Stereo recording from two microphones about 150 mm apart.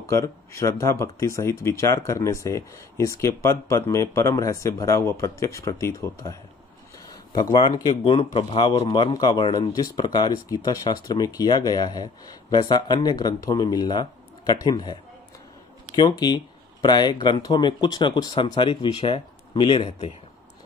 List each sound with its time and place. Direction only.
0.0 s speech: 20° left (ahead or behind)
8.1 s speech: 35° left (ahead or behind)
16.0 s speech: 25° left (ahead or behind)